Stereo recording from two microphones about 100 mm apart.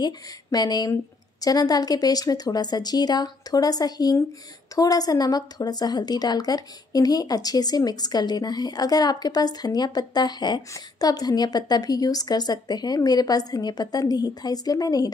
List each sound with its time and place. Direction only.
0.0 s a woman's voice: 40° left (ahead or behind)